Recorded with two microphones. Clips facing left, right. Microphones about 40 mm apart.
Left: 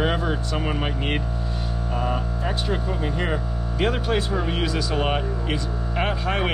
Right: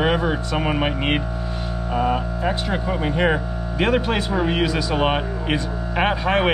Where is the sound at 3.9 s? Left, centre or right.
Right.